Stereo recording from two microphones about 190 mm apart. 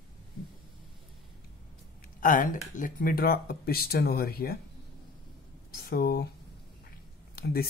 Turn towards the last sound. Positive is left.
turn(degrees=50)  # may be behind; listen again after turning